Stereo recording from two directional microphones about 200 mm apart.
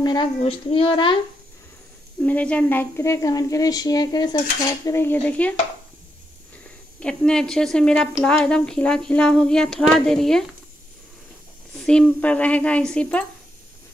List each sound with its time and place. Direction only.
0.0 s a woman's voice: 20° left (ahead or behind)
2.2 s a woman's voice: 5° left (ahead or behind)
7.0 s a woman's voice: 5° left (ahead or behind)
11.8 s a woman's voice: 5° left (ahead or behind)